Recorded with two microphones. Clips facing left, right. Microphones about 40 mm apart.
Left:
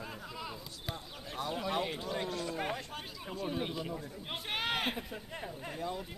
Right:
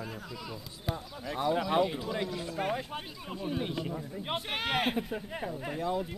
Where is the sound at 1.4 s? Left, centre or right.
Right.